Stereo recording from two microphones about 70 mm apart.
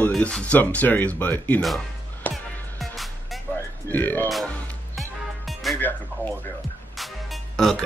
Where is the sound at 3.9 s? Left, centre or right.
Left.